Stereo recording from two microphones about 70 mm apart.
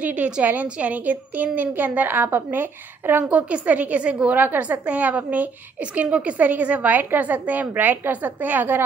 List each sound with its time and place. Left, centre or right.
0.0 s a woman's voice: right
3.3 s a woman's voice: centre